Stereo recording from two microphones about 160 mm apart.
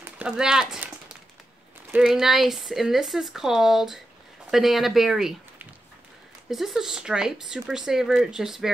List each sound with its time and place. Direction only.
0.2 s speech: 5° right (ahead or behind)